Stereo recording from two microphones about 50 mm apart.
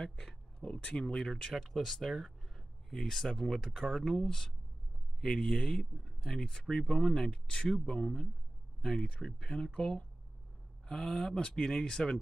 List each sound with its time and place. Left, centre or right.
0.0 s speech: centre
11.1 s speech: centre